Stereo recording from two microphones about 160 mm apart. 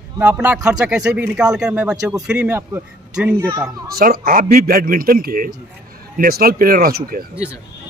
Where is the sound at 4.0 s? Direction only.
65° right (ahead or behind).